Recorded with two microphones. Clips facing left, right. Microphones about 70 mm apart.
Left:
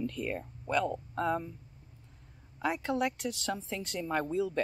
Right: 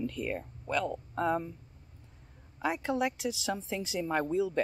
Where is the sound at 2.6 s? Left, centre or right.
Centre.